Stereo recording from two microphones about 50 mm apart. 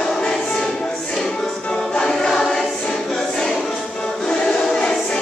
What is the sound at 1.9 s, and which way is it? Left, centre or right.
Choir, centre.